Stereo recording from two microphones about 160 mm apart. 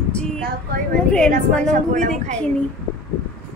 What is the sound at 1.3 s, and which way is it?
A woman's voice, 50° right (ahead or behind).